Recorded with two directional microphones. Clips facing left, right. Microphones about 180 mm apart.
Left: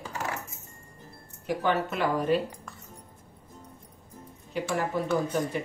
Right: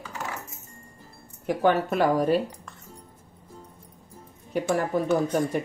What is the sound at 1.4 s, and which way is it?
Speech, 50° right (ahead or behind).